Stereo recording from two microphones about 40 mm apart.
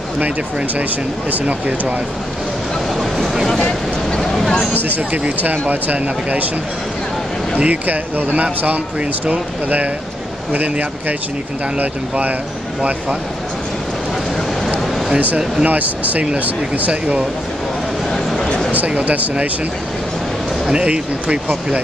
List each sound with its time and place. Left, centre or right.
1.5 s speech: right
4.7 s speech: right
7.5 s speech: right
15.1 s speech: right
18.9 s speech: right
20.7 s speech: right